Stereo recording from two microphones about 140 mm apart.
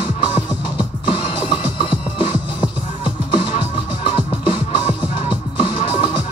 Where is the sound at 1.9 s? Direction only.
35° left (ahead or behind).